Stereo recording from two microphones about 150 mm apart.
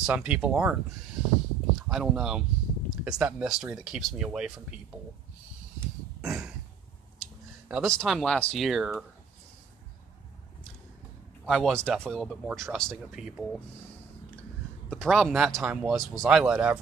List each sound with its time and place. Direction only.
0.0 s speech: 10° right (ahead or behind)
1.9 s speech: 5° right (ahead or behind)
6.2 s a sound: 5° right (ahead or behind)
7.8 s speech: 5° left (ahead or behind)
11.4 s speech: centre (ahead or behind)
14.9 s speech: 5° left (ahead or behind)